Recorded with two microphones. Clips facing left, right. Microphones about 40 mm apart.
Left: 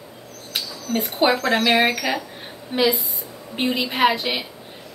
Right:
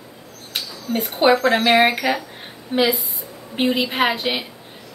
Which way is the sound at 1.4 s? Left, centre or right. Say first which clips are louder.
Right 3 dB; right.